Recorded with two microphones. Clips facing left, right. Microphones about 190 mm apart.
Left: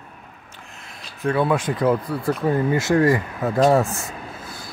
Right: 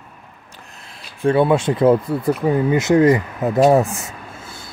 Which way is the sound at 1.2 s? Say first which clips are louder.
Right 5 dB; 25° right (ahead or behind).